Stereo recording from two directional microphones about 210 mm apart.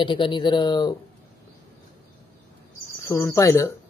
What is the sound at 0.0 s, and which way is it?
Speech, 25° left (ahead or behind).